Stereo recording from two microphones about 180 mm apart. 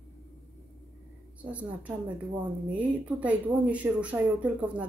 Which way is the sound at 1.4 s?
10° right (ahead or behind).